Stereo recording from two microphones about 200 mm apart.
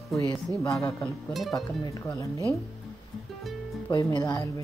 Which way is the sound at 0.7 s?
15° left (ahead or behind).